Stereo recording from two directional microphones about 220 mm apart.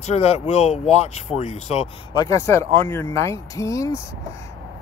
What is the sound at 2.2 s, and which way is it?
Speech, 15° left (ahead or behind).